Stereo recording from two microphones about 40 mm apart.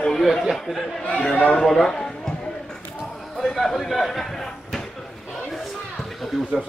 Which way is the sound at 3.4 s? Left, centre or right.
Centre.